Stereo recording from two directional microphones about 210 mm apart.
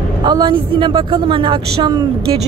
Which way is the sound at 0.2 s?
20° right (ahead or behind).